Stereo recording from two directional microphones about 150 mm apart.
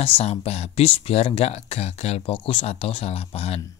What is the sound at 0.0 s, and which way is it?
Speech, 40° left (ahead or behind).